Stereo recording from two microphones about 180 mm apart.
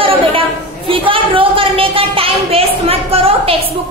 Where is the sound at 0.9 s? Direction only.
30° right (ahead or behind).